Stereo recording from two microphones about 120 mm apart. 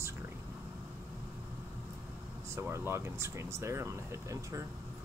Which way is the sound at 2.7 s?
20° right (ahead or behind).